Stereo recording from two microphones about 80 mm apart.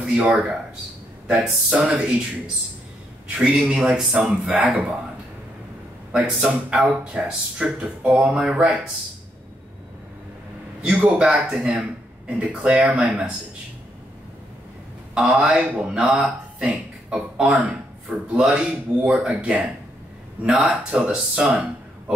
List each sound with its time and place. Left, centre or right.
0.0 s speech: centre
6.1 s speech: centre
10.8 s speech: centre
15.4 s speech: centre